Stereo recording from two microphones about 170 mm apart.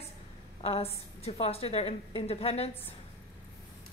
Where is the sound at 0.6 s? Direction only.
35° left (ahead or behind).